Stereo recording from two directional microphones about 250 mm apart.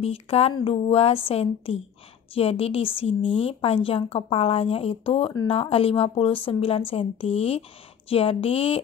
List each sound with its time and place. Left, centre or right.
0.0 s speech: left